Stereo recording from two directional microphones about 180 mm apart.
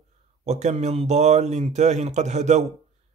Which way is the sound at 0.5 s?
40° right (ahead or behind).